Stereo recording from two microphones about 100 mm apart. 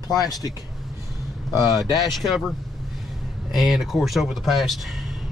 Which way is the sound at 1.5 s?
40° left (ahead or behind).